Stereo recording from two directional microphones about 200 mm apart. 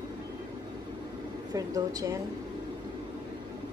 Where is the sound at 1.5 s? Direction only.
20° right (ahead or behind).